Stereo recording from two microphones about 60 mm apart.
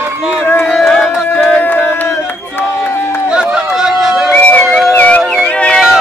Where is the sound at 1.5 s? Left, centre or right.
Left.